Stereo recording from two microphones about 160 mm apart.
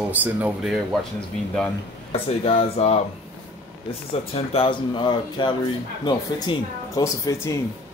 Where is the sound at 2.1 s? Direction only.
40° left (ahead or behind).